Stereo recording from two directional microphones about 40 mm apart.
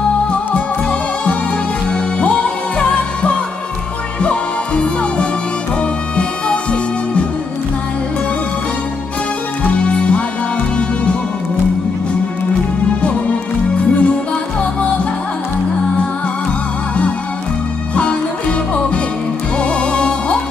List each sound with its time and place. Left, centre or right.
2.1 s music: left
9.7 s music: left
13.0 s music: left
19.6 s music: left